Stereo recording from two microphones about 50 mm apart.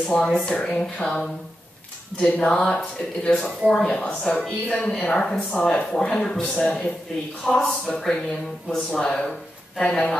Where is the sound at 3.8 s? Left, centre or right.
Left.